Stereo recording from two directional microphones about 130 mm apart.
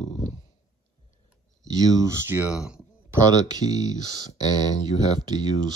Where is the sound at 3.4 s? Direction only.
30° right (ahead or behind).